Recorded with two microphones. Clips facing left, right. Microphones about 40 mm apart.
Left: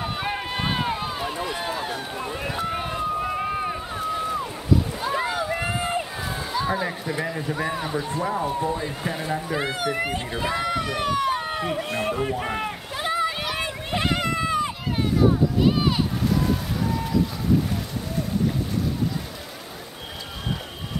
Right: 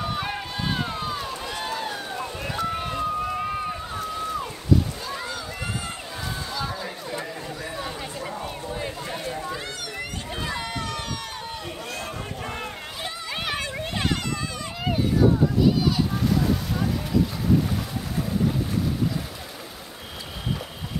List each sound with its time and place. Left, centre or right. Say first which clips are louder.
0.0 s boat: left 1 dB; centre
0.6 s run: left 2 dB; left
5.0 s rowboat: left 7 dB; left
6.5 s a sound: left 9 dB; left
7.5 s speech: left 6 dB; left
8.5 s speech: left 6 dB; centre
9.5 s speech: left 7 dB; left
10.5 s run: left 7 dB; centre
10.8 s run: left 8 dB; centre
11.4 s rowboat: left 7 dB; left
13.6 s a sound: left 2 dB; centre
15.6 s a sound: even; left